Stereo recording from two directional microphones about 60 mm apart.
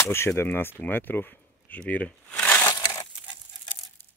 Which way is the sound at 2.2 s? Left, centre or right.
Centre.